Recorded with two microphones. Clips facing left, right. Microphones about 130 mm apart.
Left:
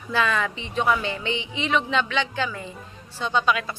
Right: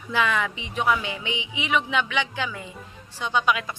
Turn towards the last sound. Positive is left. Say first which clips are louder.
# left 1 dB
turn(degrees=-15)  # may be behind; listen again after turning